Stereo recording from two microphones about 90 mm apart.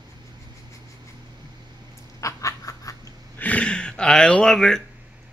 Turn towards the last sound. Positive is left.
turn(degrees=5)  # may be behind; listen again after turning